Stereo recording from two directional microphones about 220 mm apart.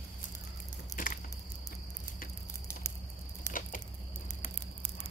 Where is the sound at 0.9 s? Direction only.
40° left (ahead or behind).